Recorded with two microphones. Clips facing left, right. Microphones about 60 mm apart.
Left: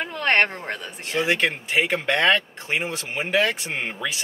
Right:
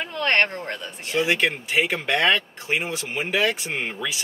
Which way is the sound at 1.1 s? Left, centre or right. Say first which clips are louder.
Even; centre.